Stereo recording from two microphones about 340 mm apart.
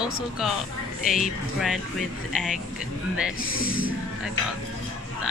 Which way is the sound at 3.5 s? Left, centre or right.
Left.